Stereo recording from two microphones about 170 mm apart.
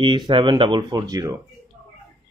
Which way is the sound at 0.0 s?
30° right (ahead or behind).